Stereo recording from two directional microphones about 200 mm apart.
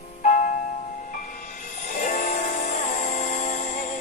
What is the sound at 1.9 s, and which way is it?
Music, 40° left (ahead or behind).